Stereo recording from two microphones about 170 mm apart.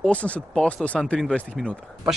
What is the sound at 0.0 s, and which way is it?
Speech, 10° left (ahead or behind).